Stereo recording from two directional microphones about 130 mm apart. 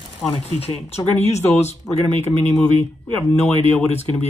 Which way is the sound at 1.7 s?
60° left (ahead or behind).